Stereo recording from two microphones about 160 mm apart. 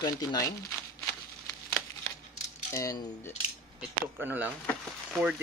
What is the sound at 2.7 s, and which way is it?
Speech, 20° left (ahead or behind).